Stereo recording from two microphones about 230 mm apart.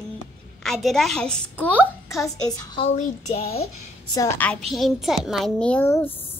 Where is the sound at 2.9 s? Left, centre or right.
Left.